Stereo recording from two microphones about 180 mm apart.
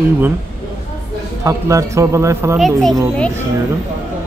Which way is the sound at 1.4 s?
20° right (ahead or behind).